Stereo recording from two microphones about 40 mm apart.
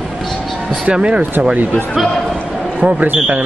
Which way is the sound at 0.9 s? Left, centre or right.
Right.